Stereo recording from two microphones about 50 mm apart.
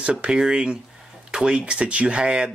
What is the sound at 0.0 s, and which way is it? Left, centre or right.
Speech, centre.